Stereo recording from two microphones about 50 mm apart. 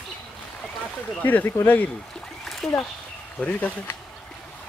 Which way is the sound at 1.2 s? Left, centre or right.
Left.